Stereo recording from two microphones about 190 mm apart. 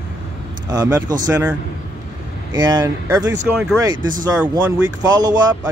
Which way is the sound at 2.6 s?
20° right (ahead or behind).